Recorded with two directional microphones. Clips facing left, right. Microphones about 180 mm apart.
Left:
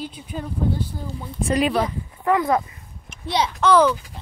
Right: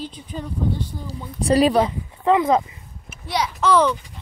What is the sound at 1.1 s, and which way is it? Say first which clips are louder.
Speech: right 5 dB; 35° right (ahead or behind).